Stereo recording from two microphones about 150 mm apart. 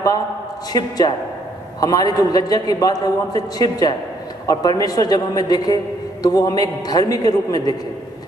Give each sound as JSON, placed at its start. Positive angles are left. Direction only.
{"t": 0.7, "sound": "a man's voice", "side_deg": 25}